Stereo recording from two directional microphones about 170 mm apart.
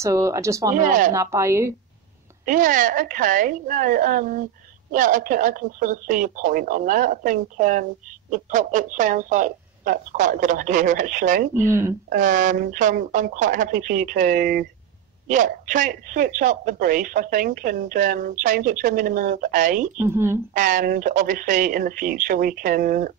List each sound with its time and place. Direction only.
0.0 s speech: 20° right (ahead or behind)
0.7 s a woman's voice: 50° right (ahead or behind)
1.1 s speech: 15° right (ahead or behind)
2.4 s a woman's voice: 50° right (ahead or behind)
11.5 s speech: 15° right (ahead or behind)
12.1 s a woman's voice: 50° right (ahead or behind)
20.0 s speech: 15° right (ahead or behind)
20.5 s a woman's voice: 50° right (ahead or behind)